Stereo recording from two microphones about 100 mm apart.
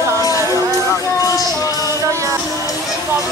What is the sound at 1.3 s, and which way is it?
Music, 35° left (ahead or behind).